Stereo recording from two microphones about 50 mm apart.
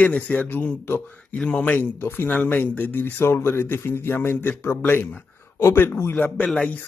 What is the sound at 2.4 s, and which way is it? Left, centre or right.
Speech, left.